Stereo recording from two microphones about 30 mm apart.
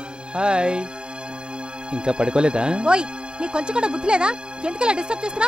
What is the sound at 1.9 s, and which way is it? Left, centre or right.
Speech, right.